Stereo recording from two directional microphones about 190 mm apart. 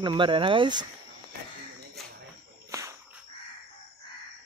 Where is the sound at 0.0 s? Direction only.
25° right (ahead or behind).